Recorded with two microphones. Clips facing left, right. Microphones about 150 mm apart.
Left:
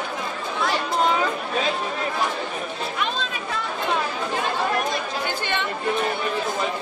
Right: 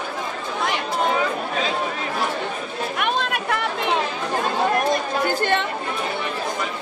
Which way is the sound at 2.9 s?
60° right (ahead or behind).